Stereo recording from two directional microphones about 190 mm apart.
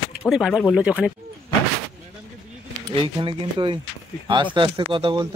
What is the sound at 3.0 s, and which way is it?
Speech, 25° right (ahead or behind).